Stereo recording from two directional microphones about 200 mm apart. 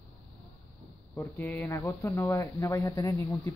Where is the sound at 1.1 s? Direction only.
10° left (ahead or behind).